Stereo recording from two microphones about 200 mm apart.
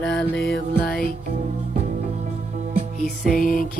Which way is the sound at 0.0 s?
60° left (ahead or behind).